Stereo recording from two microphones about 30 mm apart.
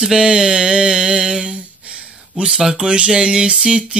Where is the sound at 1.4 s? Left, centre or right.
Right.